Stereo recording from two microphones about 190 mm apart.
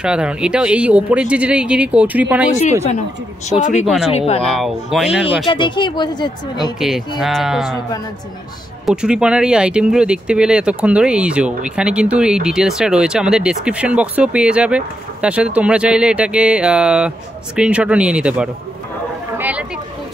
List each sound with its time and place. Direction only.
0.0 s speech: 5° right (ahead or behind)
3.4 s speech: 35° left (ahead or behind)
3.8 s speech: centre (ahead or behind)
5.5 s speech: 25° left (ahead or behind)
6.8 s speech: centre (ahead or behind)
8.8 s speech: 5° right (ahead or behind)
19.3 s a sound: 10° right (ahead or behind)